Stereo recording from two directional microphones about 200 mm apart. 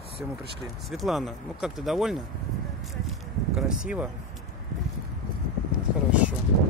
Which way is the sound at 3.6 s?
5° right (ahead or behind).